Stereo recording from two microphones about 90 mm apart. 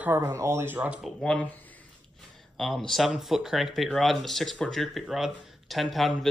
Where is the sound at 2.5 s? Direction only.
Centre (ahead or behind).